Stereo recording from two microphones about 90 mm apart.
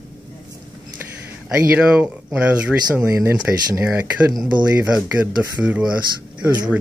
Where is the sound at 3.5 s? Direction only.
25° right (ahead or behind).